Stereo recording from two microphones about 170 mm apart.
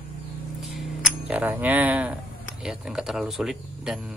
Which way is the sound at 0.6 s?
Centre (ahead or behind).